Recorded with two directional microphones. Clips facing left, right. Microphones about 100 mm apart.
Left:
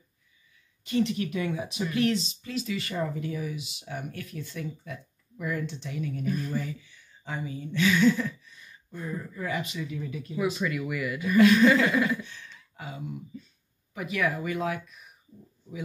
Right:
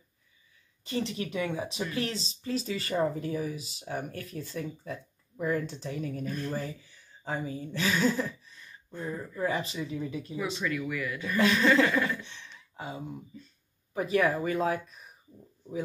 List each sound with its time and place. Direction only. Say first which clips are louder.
0.8 s speech: left 5 dB; 30° right (ahead or behind)
9.4 s speech: right 3 dB; 35° right (ahead or behind)
10.4 s speech: left 4 dB; 5° left (ahead or behind)
12.2 s speech: left 4 dB; 25° right (ahead or behind)